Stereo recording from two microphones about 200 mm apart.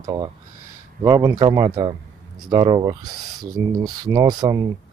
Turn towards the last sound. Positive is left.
turn(degrees=-20)  # may be behind; listen again after turning